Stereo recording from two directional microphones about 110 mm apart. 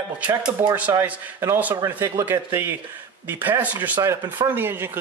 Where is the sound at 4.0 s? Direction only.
25° right (ahead or behind).